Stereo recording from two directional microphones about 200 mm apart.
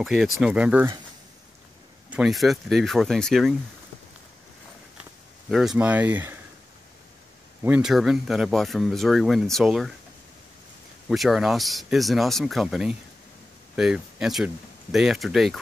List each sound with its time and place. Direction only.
0.0 s speech: centre (ahead or behind)
2.0 s speech: 5° right (ahead or behind)
5.5 s speech: centre (ahead or behind)
7.6 s speech: 5° right (ahead or behind)
11.1 s speech: centre (ahead or behind)